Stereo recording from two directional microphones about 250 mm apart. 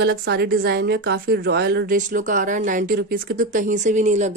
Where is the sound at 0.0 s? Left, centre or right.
Right.